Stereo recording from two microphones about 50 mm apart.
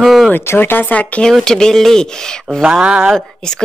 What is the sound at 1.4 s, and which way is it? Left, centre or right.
Speech, centre.